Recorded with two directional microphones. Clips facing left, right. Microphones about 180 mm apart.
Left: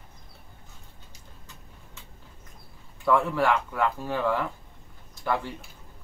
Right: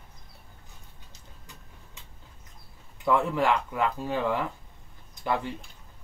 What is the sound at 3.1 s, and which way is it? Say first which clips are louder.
Speech: left 1 dB; 20° right (ahead or behind).